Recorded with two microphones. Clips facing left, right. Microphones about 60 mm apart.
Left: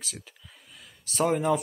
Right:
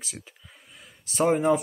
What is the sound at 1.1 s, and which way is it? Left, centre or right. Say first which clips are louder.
Speech: right 3 dB; right.